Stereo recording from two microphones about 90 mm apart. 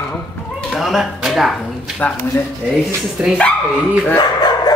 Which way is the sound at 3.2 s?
10° right (ahead or behind).